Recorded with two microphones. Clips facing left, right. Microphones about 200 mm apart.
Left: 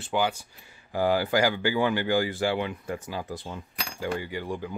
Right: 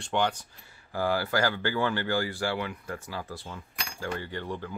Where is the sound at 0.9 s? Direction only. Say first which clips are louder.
Left 4 dB; 20° left (ahead or behind).